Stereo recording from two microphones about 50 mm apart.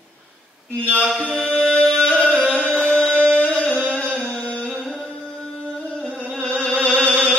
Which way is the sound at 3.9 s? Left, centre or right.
Left.